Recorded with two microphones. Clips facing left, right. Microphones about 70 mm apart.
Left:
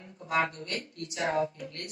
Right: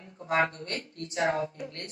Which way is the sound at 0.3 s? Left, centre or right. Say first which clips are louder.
Right 2 dB; right.